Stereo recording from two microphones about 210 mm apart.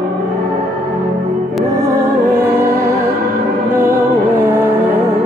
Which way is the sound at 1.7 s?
15° right (ahead or behind).